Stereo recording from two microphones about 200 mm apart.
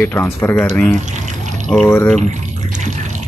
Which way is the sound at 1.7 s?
5° left (ahead or behind).